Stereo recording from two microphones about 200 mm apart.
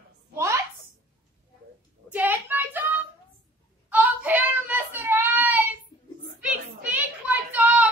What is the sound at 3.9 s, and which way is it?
Child singing, 5° right (ahead or behind).